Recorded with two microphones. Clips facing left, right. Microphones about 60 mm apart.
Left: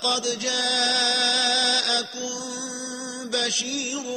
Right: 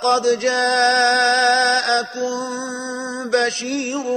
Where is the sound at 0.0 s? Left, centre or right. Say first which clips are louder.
Right 10 dB; right.